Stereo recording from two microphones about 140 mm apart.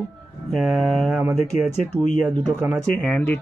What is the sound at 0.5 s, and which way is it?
Speech, centre (ahead or behind).